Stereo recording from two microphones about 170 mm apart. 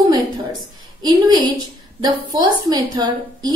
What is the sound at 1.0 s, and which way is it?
A woman's voice, 25° right (ahead or behind).